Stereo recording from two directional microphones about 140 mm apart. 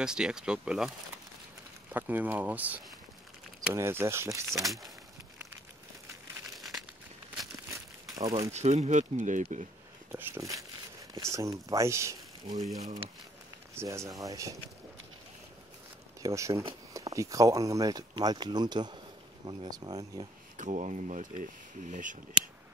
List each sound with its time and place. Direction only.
0.0 s speech: 5° right (ahead or behind); by 4.6 s 20° right (ahead or behind)
6.5 s crumpling: centre (ahead or behind)
8.2 s speech: 25° right (ahead or behind)
8.5 s speech: 50° right (ahead or behind)
10.1 s speech: 20° right (ahead or behind)
13.7 s speech: 20° right (ahead or behind)
16.2 s speech: 25° right (ahead or behind)
20.5 s speech: 60° right (ahead or behind)